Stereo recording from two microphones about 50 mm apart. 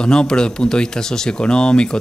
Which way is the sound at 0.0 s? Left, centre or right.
Centre.